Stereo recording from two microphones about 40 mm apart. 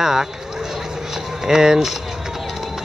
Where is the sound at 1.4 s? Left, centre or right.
Centre.